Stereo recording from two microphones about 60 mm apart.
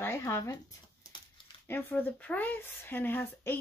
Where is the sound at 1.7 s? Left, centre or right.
Left.